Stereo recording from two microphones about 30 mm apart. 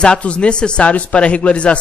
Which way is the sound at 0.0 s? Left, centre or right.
Left.